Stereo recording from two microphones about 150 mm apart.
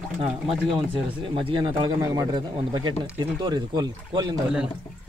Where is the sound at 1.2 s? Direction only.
35° right (ahead or behind).